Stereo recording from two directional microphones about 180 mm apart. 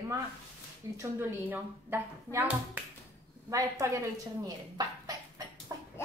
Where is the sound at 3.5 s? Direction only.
15° right (ahead or behind).